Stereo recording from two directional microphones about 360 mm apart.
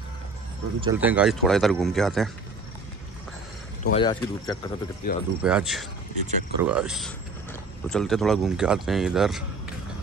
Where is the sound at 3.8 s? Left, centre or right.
Left.